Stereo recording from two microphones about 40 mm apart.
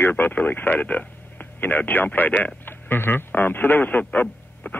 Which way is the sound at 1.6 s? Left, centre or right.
Left.